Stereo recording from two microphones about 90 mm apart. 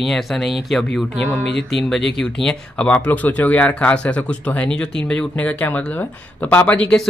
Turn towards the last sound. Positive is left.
turn(degrees=15)  # may be behind; listen again after turning